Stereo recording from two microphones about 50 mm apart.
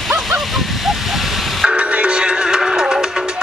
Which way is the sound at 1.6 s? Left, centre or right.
Right.